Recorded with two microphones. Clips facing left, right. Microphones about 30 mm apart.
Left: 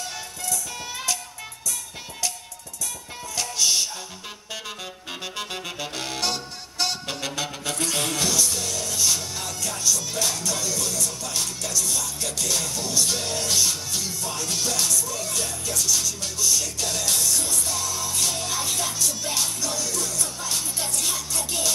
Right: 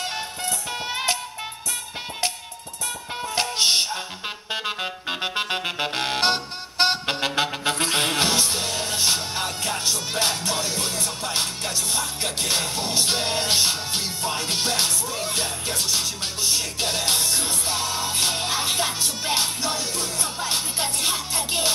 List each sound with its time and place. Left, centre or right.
0.0 s music: right
3.3 s music: right
5.2 s music: right